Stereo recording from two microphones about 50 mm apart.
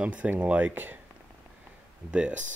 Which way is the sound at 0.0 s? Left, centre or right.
Right.